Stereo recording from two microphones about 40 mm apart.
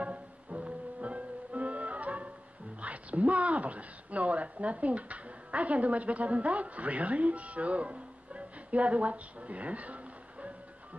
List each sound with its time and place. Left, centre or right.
0.0 s music: right
2.8 s speech: right